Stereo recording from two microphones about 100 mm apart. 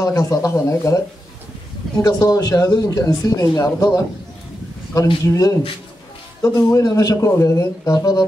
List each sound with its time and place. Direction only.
0.0 s a man's voice: 35° left (ahead or behind)
2.0 s a man's voice: 40° left (ahead or behind)
5.2 s a man's voice: 35° left (ahead or behind)